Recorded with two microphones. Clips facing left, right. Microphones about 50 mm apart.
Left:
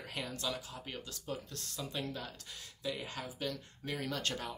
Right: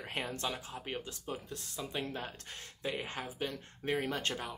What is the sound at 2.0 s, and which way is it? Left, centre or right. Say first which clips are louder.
Speech: right 2 dB; right.